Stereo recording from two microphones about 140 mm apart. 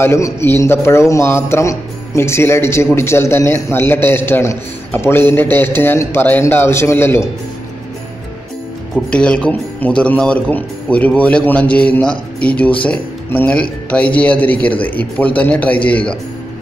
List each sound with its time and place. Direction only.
0.0 s a man's voice: 20° left (ahead or behind)
8.9 s a man's voice: 5° left (ahead or behind)